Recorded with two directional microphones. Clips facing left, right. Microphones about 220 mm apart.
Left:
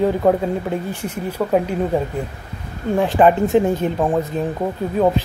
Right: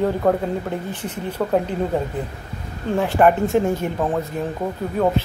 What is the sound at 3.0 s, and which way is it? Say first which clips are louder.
Speech: left 2 dB; 20° left (ahead or behind).